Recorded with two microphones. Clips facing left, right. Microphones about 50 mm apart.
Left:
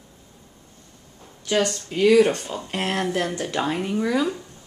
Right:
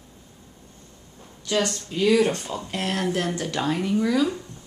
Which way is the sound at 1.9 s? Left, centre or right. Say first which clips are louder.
Left 4 dB; left.